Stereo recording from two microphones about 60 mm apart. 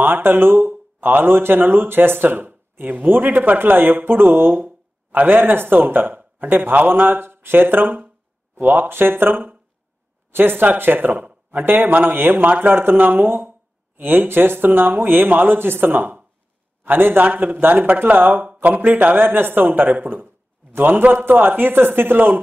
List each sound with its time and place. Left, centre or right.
0.0 s speech: right